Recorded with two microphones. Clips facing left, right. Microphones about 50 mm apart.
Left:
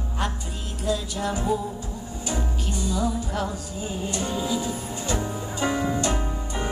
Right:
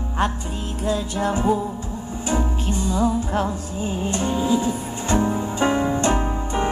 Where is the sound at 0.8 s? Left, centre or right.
Right.